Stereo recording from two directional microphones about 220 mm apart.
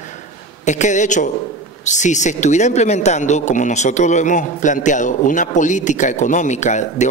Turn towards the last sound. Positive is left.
turn(degrees=30)  # may be behind; listen again after turning